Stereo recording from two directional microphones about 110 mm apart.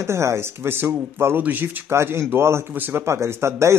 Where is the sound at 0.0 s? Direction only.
25° right (ahead or behind).